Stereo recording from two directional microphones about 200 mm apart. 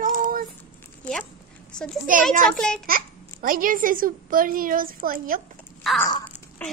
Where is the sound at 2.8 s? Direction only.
45° right (ahead or behind).